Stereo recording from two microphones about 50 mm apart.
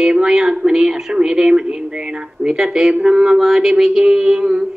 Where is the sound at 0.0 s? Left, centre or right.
Centre.